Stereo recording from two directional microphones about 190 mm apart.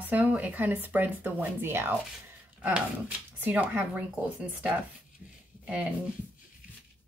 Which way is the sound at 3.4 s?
10° right (ahead or behind).